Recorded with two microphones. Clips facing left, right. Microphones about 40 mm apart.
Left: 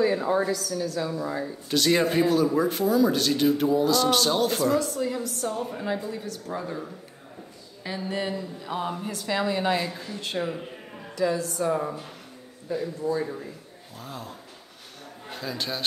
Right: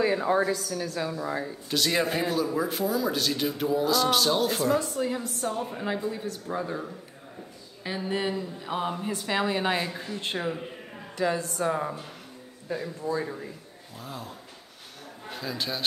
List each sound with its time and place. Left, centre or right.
0.0 s speech: right
1.7 s speech: centre
4.7 s a woman's voice: right
11.1 s speech: right; by 13.3 s centre
14.0 s a man's voice: centre